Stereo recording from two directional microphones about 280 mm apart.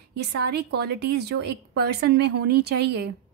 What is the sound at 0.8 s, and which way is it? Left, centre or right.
A woman's voice, right.